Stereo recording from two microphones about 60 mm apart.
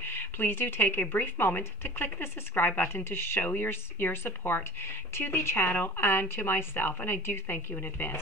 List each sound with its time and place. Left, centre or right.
0.0 s a woman's voice: left